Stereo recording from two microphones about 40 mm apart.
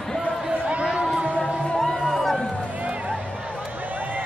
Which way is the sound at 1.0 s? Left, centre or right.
Right.